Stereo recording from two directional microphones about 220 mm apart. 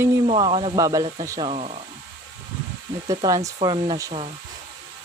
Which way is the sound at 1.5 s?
30° right (ahead or behind).